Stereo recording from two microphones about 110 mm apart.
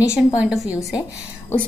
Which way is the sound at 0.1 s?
5° right (ahead or behind).